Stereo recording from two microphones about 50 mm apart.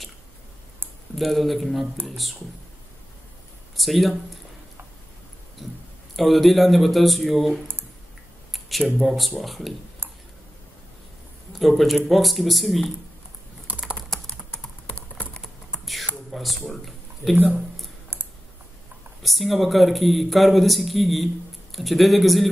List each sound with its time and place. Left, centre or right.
1.1 s a man's voice: centre
3.7 s speech: centre
5.6 s a man's voice: centre
8.5 s a sound: centre
9.0 s a man's voice: centre
11.5 s a man's voice: centre
13.7 s computer keyboard: right
14.2 s computer keyboard: left
15.8 s a sound: centre
16.3 s a man's voice: centre
19.2 s a man's voice: centre